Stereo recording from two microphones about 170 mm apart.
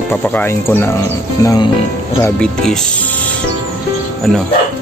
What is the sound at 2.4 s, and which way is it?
Speech, 5° left (ahead or behind).